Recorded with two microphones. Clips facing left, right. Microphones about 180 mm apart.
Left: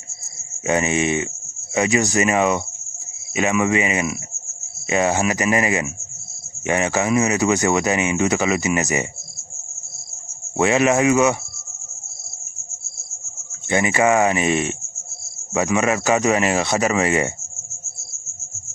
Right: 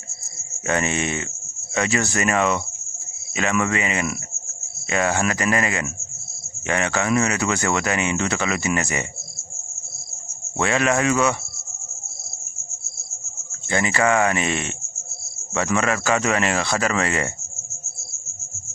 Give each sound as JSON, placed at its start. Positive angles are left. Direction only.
{"t": 0.7, "sound": "speech", "side_deg": 15}
{"t": 10.6, "sound": "speech", "side_deg": 20}
{"t": 13.7, "sound": "speech", "side_deg": 20}